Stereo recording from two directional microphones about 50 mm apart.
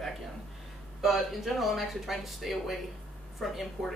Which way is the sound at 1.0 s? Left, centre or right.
Centre.